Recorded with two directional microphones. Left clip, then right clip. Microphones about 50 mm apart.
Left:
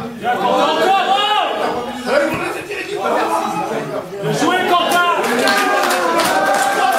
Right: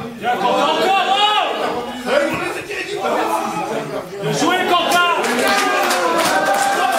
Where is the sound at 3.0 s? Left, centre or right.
Left.